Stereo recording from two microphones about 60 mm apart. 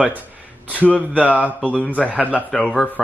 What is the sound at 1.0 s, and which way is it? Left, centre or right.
Speech, right.